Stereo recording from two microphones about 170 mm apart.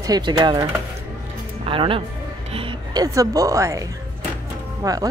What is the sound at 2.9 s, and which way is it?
Speech, 20° right (ahead or behind).